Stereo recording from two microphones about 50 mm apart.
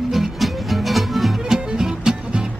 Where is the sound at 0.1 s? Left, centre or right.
Centre.